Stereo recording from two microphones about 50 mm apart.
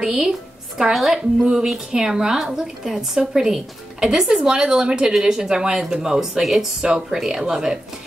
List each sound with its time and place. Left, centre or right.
0.0 s a woman's voice: centre
0.9 s a woman's voice: centre
1.4 s speech: centre